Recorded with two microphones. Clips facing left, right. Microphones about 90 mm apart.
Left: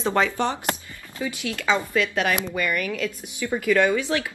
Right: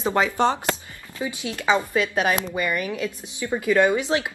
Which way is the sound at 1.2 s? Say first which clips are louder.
Even; 20° right (ahead or behind).